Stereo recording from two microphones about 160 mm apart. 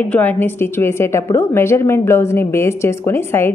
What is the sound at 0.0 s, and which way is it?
A woman's voice, 10° left (ahead or behind).